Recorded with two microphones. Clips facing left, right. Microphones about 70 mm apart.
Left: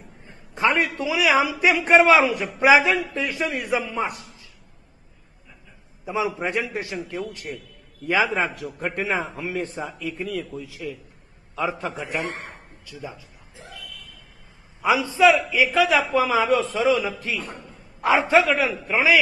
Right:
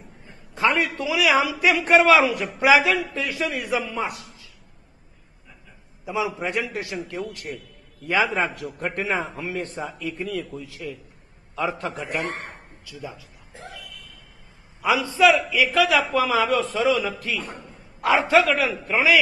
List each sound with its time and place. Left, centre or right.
0.7 s a man's voice: centre
6.1 s a man's voice: left
6.9 s a man's voice: centre
14.8 s a man's voice: centre
15.5 s a man's voice: centre
15.8 s a man's voice: centre